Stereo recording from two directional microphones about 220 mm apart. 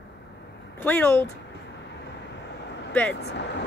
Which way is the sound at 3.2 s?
50° left (ahead or behind).